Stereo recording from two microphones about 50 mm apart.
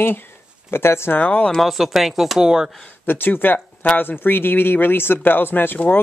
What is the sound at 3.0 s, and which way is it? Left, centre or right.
Speech, left.